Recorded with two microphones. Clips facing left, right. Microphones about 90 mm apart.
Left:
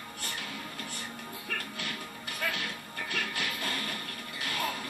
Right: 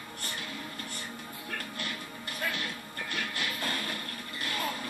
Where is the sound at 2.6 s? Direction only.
65° left (ahead or behind).